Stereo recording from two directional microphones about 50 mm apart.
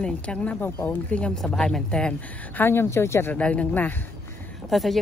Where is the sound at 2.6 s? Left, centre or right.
Left.